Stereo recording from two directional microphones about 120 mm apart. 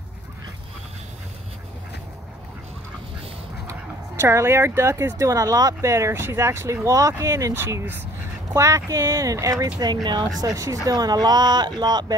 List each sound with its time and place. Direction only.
4.2 s speech: 20° right (ahead or behind)